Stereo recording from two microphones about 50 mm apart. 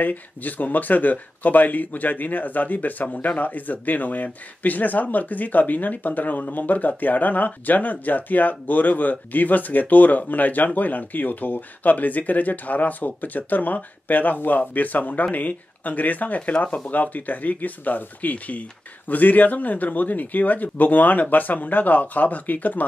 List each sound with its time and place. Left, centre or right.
0.0 s speech: left